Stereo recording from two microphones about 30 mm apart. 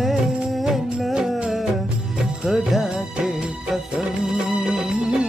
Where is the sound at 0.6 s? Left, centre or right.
Centre.